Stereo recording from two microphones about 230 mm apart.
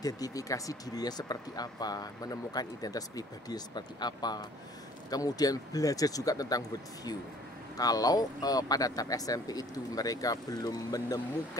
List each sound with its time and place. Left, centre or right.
0.0 s speech: centre
7.7 s speech: centre